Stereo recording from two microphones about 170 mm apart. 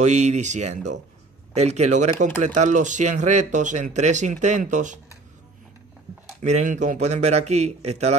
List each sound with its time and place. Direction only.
0.0 s speech: 45° right (ahead or behind)
6.4 s a man's voice: 45° right (ahead or behind)